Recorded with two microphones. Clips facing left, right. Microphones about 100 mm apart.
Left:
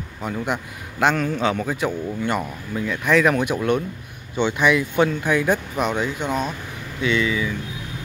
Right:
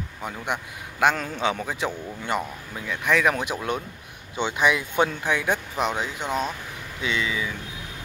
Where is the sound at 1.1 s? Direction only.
25° right (ahead or behind).